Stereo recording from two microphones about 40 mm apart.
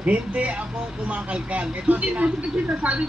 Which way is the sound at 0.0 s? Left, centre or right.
Right.